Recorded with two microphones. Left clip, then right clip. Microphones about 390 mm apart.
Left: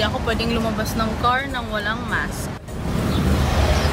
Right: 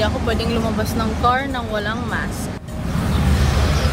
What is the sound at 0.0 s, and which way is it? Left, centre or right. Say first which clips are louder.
Speech: right 1 dB; centre.